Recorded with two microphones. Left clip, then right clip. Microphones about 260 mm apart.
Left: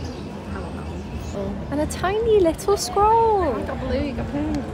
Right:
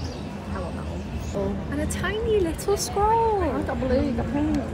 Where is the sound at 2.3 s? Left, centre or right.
Centre.